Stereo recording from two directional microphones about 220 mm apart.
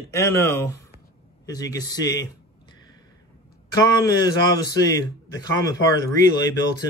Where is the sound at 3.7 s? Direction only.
15° left (ahead or behind).